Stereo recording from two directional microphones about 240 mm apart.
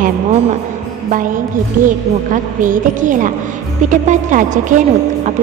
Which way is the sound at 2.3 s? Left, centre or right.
Right.